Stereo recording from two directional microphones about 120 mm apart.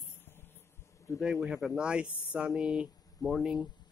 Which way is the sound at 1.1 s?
5° right (ahead or behind).